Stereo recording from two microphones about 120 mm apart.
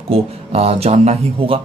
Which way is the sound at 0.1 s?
55° right (ahead or behind).